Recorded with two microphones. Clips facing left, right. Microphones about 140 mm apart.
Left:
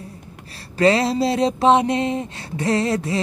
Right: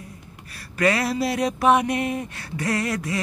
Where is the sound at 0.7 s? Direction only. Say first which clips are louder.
Left 5 dB; 25° left (ahead or behind).